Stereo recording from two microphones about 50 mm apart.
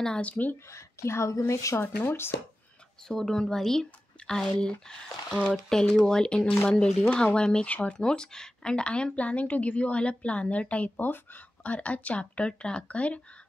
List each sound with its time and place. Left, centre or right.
0.2 s speech: left
0.7 s a woman's voice: left
1.5 s speech: left
2.0 s speech: left
3.1 s speech: centre
7.6 s speech: left
11.0 s speech: left